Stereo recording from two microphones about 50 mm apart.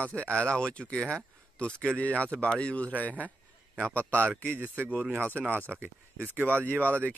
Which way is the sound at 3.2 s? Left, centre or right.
Right.